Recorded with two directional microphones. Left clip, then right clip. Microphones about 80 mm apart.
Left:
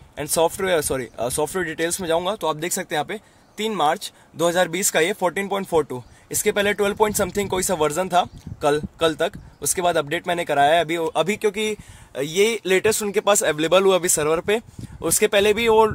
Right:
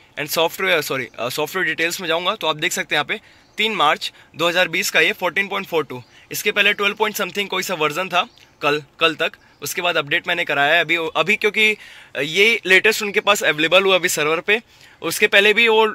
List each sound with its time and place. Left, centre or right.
0.1 s speech: left
4.4 s speech: left
6.3 s speech: left
12.9 s speech: left
14.5 s speech: left
15.3 s speech: left